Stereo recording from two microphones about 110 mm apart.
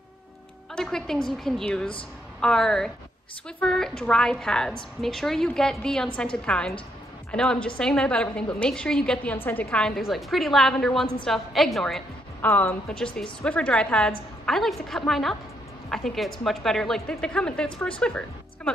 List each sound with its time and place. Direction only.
0.7 s a woman's voice: 5° left (ahead or behind)
12.4 s a woman's voice: 15° left (ahead or behind)